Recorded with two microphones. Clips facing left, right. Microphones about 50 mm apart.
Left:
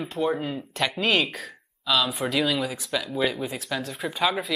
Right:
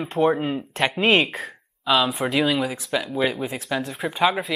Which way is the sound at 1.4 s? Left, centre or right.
Right.